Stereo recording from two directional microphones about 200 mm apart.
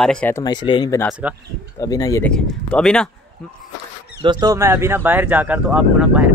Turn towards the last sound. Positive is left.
turn(degrees=-5)  # may be behind; listen again after turning